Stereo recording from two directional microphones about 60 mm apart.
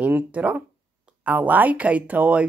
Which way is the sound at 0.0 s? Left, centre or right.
Right.